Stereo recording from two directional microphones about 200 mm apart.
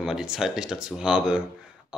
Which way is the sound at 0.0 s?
5° right (ahead or behind).